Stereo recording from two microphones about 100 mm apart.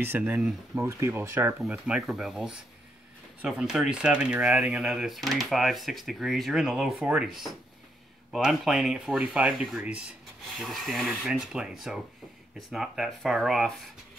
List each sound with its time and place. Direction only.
0.0 s speech: 20° right (ahead or behind)
1.6 s speech: 10° right (ahead or behind)
8.3 s speech: 5° right (ahead or behind)
10.6 s speech: centre (ahead or behind)